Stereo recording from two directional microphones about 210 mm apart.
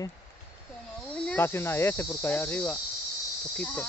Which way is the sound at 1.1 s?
5° left (ahead or behind).